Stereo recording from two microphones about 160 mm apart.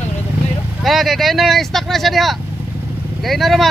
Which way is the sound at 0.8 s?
Centre (ahead or behind).